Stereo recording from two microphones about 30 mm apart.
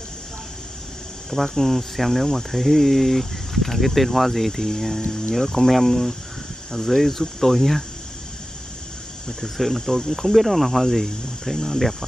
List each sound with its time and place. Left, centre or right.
1.3 s speech: centre
5.7 s speech: centre
6.7 s speech: centre
9.4 s speech: centre